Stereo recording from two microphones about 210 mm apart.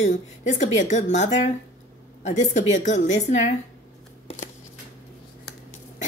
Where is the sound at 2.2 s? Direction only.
35° left (ahead or behind).